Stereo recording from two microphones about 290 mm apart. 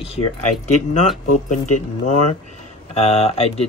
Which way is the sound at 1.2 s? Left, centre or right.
Left.